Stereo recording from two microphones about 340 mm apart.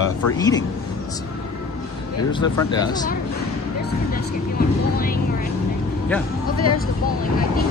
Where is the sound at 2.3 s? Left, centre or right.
Centre.